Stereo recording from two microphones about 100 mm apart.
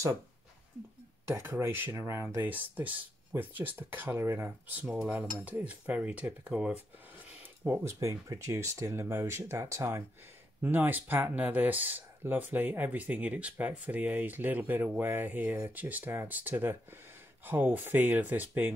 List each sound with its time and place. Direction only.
1.2 s speech: 30° right (ahead or behind)
2.4 s speech: 15° right (ahead or behind)
7.6 s speech: 25° right (ahead or behind)
10.6 s speech: 20° right (ahead or behind)